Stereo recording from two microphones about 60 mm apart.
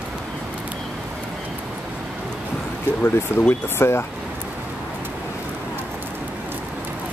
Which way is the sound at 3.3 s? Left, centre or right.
Left.